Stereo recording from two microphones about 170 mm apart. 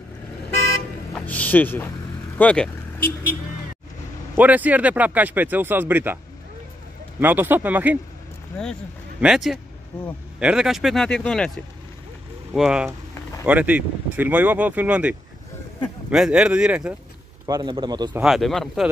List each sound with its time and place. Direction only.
1.1 s speech: 10° left (ahead or behind)
2.3 s vehicle: 5° left (ahead or behind)
4.4 s speech: 10° right (ahead or behind)
7.2 s speech: 10° right (ahead or behind)
9.2 s speech: centre (ahead or behind)
17.5 s speech: 25° right (ahead or behind)
18.2 s speech: centre (ahead or behind)